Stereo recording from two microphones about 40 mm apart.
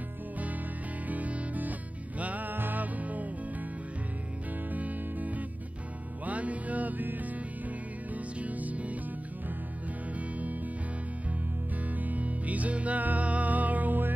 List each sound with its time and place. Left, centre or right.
1.0 s music: right
4.6 s music: right
10.1 s music: right
11.9 s music: right